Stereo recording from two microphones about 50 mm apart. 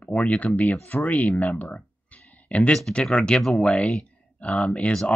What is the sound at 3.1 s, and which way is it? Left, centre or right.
Speech, centre.